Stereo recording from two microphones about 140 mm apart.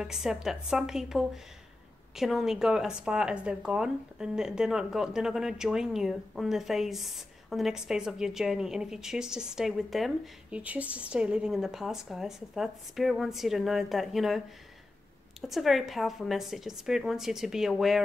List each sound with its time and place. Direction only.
0.0 s speech: 5° right (ahead or behind)
15.4 s speech: centre (ahead or behind)